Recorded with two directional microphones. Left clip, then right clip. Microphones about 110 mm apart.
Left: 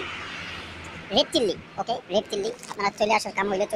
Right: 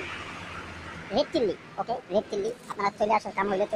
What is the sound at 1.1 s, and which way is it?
Speech, 5° left (ahead or behind).